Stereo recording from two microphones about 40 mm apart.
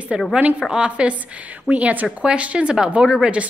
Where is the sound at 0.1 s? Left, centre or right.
Right.